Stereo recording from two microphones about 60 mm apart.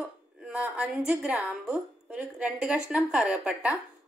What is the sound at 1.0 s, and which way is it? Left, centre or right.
Speech, centre.